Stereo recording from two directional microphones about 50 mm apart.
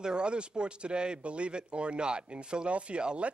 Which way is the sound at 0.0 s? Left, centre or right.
Centre.